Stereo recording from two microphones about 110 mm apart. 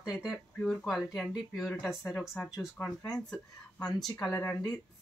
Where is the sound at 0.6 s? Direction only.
10° left (ahead or behind).